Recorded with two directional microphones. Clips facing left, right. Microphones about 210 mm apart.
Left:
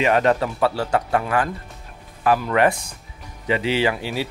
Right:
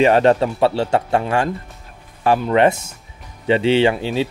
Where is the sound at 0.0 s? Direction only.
30° right (ahead or behind).